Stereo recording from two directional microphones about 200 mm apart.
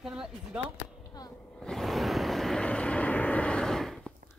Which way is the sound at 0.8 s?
20° left (ahead or behind).